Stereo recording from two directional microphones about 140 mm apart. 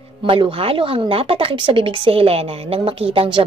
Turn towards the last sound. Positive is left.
turn(degrees=-40)  # may be behind; listen again after turning